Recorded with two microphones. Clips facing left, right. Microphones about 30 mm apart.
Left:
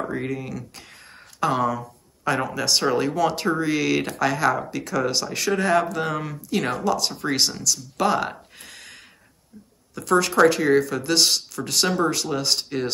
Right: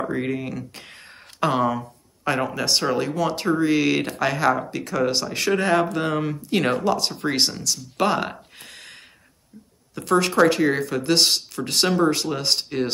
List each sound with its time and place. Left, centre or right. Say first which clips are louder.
0.0 s a sound: right 2 dB; centre
2.2 s speech: even; centre
6.4 s speech: right 1 dB; right
7.2 s speech: even; centre
10.0 s speech: even; centre